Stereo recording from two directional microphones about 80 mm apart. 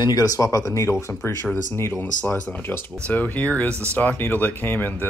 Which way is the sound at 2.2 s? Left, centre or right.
Centre.